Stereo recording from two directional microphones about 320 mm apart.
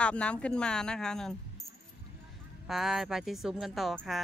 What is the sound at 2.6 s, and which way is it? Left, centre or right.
Speech, centre.